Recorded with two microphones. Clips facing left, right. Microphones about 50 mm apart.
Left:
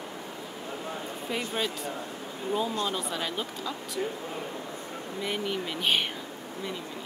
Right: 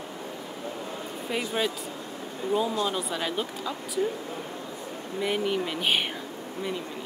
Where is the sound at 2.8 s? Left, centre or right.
Centre.